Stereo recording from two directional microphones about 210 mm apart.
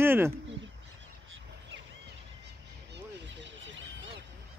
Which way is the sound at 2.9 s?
60° right (ahead or behind).